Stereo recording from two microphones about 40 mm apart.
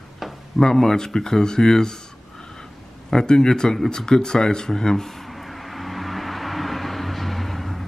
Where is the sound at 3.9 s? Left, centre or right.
Centre.